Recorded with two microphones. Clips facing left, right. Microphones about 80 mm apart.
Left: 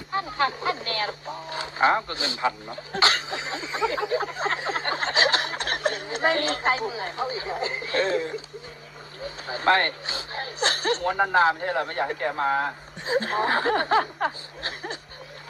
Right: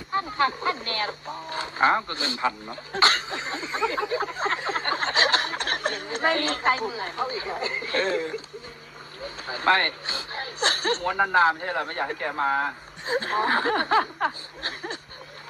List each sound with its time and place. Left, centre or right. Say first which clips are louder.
0.1 s speech: right 1 dB; right
3.0 s a sound: right 1 dB; right
9.2 s vehicle: left 1 dB; right
10.0 s speech: even; right